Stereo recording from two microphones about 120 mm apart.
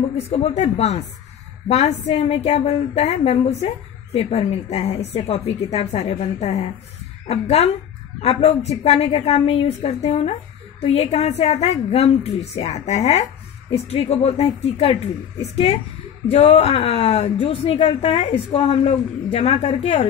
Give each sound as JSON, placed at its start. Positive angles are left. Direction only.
{"t": 0.3, "sound": "speech", "side_deg": 60}
{"t": 13.8, "sound": "speech", "side_deg": 55}